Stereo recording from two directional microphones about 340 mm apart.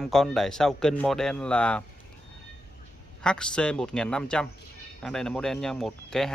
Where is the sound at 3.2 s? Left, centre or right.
Centre.